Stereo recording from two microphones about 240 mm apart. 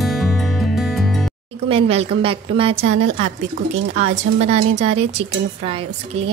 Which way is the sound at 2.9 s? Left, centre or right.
Right.